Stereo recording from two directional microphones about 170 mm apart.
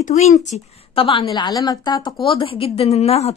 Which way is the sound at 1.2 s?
20° left (ahead or behind).